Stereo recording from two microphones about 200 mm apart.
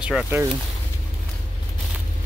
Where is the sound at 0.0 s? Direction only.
Centre (ahead or behind).